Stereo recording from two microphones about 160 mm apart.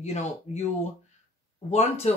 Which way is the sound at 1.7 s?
40° left (ahead or behind).